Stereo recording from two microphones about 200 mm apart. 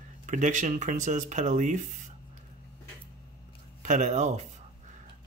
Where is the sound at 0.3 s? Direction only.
40° right (ahead or behind).